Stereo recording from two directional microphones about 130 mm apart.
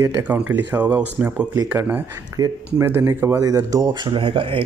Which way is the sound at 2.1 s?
25° right (ahead or behind).